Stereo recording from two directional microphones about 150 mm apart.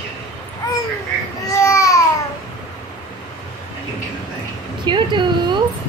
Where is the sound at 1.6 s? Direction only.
20° left (ahead or behind).